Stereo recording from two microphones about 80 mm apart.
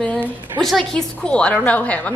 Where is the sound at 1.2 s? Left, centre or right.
Centre.